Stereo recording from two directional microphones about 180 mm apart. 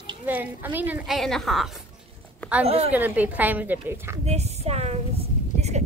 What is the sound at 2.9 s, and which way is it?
A woman's voice, 10° right (ahead or behind).